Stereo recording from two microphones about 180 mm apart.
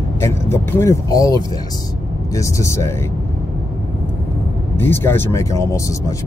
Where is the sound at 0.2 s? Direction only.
15° left (ahead or behind).